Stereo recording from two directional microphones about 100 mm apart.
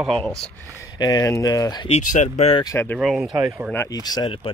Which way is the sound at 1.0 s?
35° left (ahead or behind).